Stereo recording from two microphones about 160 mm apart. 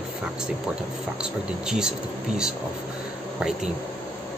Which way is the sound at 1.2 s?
5° right (ahead or behind).